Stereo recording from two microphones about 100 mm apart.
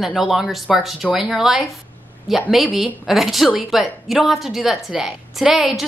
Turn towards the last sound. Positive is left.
turn(degrees=0)  # may be behind; listen again after turning